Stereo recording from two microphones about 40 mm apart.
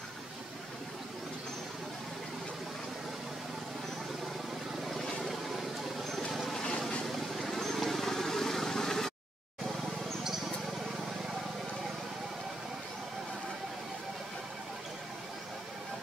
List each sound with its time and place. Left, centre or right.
4.9 s vehicle: centre
6.5 s vehicle: centre
7.1 s vehicle: centre